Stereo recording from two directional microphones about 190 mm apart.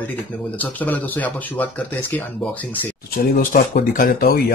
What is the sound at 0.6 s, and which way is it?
Speech, 10° left (ahead or behind).